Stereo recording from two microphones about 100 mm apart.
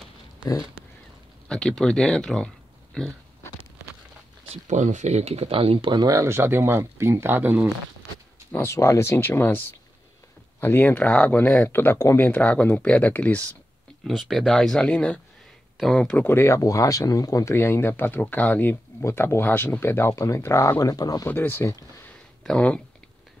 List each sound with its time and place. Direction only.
1.5 s speech: 5° left (ahead or behind)
5.0 s speech: 90° right; by 6.1 s 50° right (ahead or behind)
6.1 s speech: 25° right (ahead or behind)
8.5 s speech: 15° left (ahead or behind)
8.7 s speech: 30° left (ahead or behind); by 11.7 s 10° left (ahead or behind)
11.7 s speech: 20° left (ahead or behind)
12.3 s speech: 10° left (ahead or behind)
14.0 s speech: centre (ahead or behind)
16.3 s speech: 25° left (ahead or behind)
21.3 s speech: 20° left (ahead or behind)
22.4 s speech: 5° left (ahead or behind)